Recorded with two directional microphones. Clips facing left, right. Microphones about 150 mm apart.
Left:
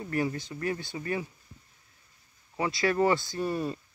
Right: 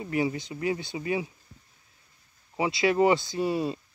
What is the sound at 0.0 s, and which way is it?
Speech, 10° right (ahead or behind).